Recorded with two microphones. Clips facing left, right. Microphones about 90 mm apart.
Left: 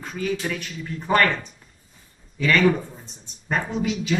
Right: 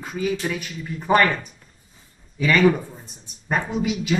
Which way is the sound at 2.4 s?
15° right (ahead or behind).